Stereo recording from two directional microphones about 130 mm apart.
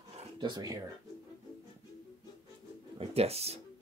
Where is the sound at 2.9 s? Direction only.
50° right (ahead or behind).